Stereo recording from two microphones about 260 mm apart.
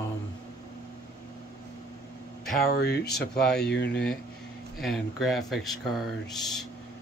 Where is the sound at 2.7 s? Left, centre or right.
Left.